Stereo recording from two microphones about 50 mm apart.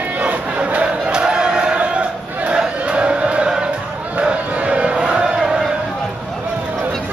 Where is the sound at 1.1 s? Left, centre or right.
Centre.